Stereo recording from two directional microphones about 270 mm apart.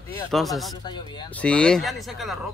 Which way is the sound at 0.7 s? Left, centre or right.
Centre.